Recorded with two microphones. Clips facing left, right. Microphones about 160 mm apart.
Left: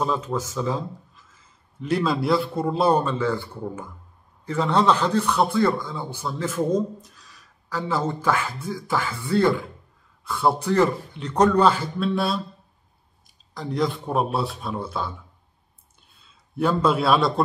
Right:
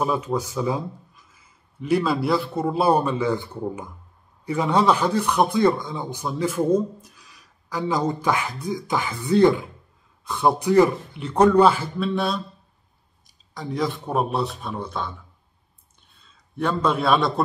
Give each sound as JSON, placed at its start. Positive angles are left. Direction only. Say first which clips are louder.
{"t": 0.0, "sound": "speech", "louder": "right 2 dB", "side_deg": -10}
{"t": 13.6, "sound": "a man's voice", "louder": "left 1 dB", "side_deg": 0}
{"t": 16.5, "sound": "a man's voice", "louder": "left 2 dB", "side_deg": 5}